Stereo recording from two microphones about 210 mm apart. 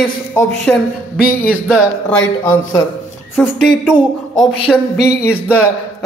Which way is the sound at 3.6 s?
5° right (ahead or behind).